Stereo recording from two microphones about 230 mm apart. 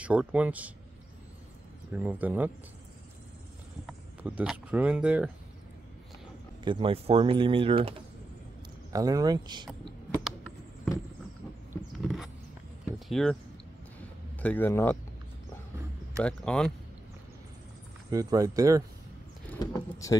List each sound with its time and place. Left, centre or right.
0.0 s speech: centre
2.0 s speech: centre
3.8 s speech: centre
6.6 s speech: right
8.9 s speech: centre
10.2 s a sound: centre
11.7 s rodents: centre
13.1 s speech: centre
14.4 s speech: centre
16.2 s speech: centre
18.1 s speech: centre
19.5 s speech: centre